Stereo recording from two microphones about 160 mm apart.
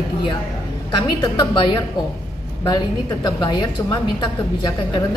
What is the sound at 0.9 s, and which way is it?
A woman's voice, 25° left (ahead or behind).